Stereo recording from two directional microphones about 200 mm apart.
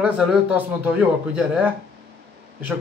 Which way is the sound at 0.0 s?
5° right (ahead or behind).